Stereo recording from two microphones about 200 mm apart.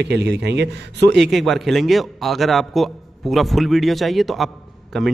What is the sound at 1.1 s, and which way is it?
A man's voice, centre (ahead or behind).